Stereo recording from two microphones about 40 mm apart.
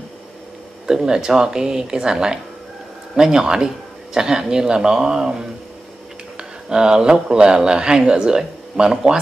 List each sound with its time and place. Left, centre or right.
0.8 s speech: centre